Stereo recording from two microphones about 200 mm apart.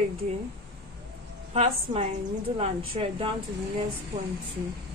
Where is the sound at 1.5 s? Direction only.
30° right (ahead or behind).